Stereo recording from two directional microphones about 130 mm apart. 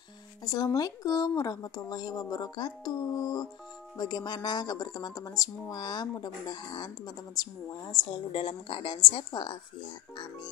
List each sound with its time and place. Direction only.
0.5 s speech: 30° left (ahead or behind)